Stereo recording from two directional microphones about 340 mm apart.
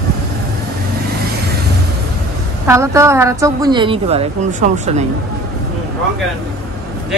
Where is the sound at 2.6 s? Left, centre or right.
Centre.